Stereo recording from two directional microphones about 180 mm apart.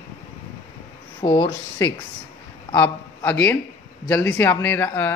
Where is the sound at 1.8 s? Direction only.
20° left (ahead or behind).